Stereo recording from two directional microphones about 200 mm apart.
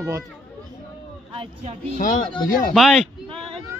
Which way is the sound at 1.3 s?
25° right (ahead or behind).